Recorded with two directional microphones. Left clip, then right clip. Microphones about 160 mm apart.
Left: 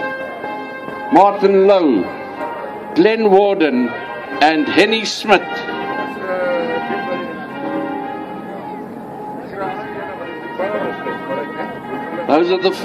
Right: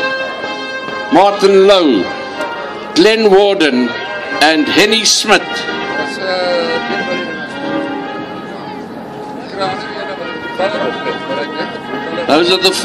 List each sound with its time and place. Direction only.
0.0 s music: 25° right (ahead or behind)
1.1 s a man's voice: 25° right (ahead or behind)
2.9 s music: 20° right (ahead or behind)
10.6 s music: 25° right (ahead or behind)
12.2 s a man's voice: 30° right (ahead or behind)